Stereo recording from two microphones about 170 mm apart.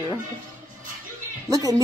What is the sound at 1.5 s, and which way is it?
Speech, 20° right (ahead or behind).